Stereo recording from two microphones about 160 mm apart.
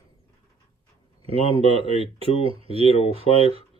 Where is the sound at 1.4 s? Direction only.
40° left (ahead or behind).